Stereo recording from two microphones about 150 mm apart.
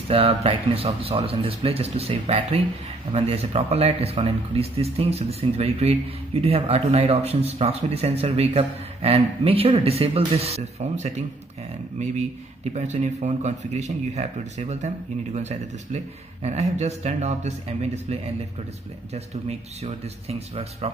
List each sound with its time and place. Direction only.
0.1 s a man's voice: 40° right (ahead or behind)
12.7 s speech: 50° right (ahead or behind)